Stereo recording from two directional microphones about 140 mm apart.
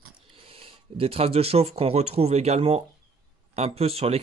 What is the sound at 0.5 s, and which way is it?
Speech, 40° right (ahead or behind).